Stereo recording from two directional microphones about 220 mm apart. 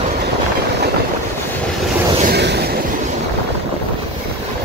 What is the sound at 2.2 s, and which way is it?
Waves, 50° right (ahead or behind).